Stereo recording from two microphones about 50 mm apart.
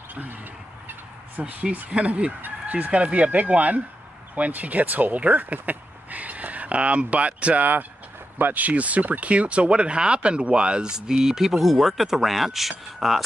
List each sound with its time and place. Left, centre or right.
1.4 s speech: right; by 13.2 s centre